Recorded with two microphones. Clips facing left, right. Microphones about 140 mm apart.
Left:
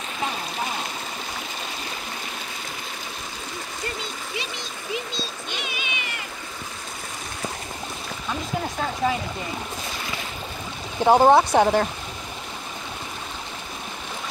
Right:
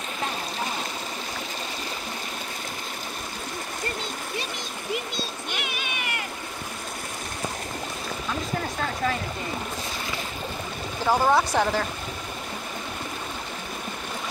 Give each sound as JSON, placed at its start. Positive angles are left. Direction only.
{"t": 5.5, "sound": "cat", "side_deg": -55}
{"t": 11.1, "sound": "speech", "side_deg": 25}